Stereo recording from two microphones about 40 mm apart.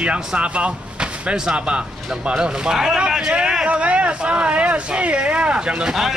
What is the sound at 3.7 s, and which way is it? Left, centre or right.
Speech, right.